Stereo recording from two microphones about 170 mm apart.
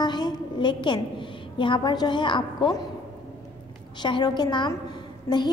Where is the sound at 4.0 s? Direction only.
25° left (ahead or behind).